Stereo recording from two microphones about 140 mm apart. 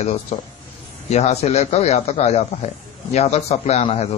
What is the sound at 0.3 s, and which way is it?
Speech, 50° left (ahead or behind).